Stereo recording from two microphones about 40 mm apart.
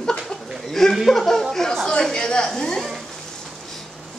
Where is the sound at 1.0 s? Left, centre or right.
Centre.